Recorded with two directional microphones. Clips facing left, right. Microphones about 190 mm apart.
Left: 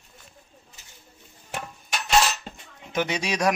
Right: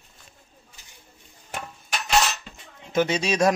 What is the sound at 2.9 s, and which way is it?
Speech, 15° left (ahead or behind).